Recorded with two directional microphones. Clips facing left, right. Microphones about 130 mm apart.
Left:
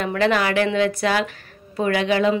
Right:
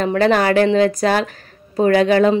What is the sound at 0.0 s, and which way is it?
Speech, 40° right (ahead or behind).